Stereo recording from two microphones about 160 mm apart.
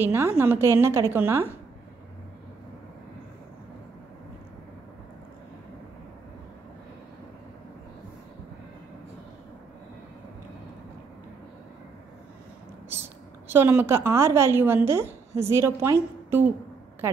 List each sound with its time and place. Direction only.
0.0 s a woman's voice: 15° right (ahead or behind)
13.5 s a woman's voice: 15° right (ahead or behind)